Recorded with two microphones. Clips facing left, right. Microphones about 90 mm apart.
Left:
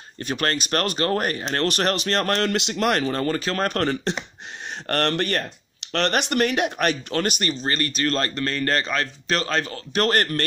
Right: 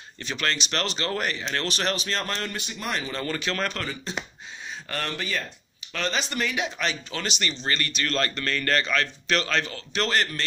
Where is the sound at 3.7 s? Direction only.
60° left (ahead or behind).